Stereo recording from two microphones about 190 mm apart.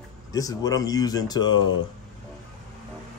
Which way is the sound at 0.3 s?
20° left (ahead or behind).